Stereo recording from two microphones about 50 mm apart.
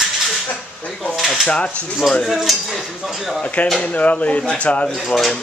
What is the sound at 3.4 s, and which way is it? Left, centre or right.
Speech, left.